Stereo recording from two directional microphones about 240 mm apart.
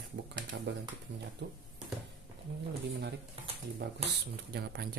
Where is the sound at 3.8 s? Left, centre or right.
Right.